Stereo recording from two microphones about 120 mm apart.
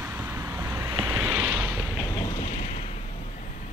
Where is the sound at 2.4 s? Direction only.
65° left (ahead or behind).